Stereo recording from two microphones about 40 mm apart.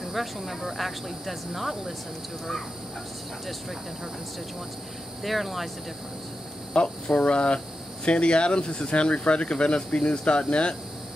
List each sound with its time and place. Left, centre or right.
0.0 s speech: centre
5.2 s speech: centre
6.7 s speech: left